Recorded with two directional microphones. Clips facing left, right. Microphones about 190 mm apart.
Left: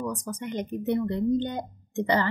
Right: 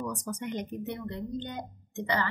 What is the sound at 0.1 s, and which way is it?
Speech, 30° left (ahead or behind).